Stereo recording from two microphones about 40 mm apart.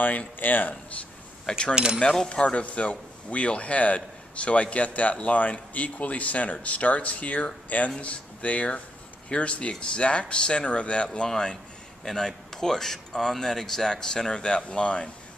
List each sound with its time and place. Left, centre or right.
0.4 s speech: left
1.5 s speech: left
11.2 s speech: centre